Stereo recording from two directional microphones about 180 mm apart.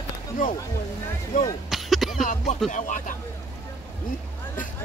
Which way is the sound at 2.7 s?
45° left (ahead or behind).